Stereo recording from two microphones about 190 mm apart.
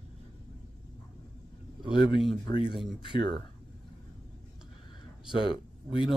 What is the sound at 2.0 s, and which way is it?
Speech, 25° left (ahead or behind).